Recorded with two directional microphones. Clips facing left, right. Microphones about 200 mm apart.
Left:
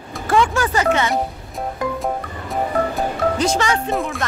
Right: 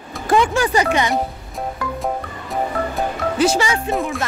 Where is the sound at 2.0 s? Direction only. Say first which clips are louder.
Even; centre (ahead or behind).